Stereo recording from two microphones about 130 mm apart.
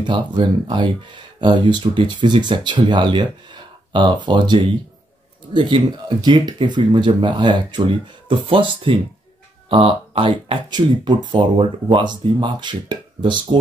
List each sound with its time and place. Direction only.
0.0 s speech: 35° right (ahead or behind)